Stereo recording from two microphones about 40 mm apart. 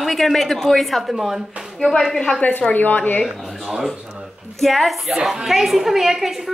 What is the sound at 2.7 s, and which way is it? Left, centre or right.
Speech, left.